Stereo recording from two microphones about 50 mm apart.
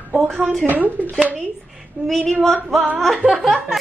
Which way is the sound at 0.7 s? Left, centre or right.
Right.